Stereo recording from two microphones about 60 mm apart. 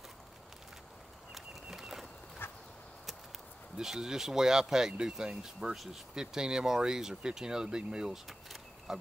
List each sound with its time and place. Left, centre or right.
1.3 s bird: centre
2.4 s a sound: left
3.7 s speech: centre
8.3 s power windows: centre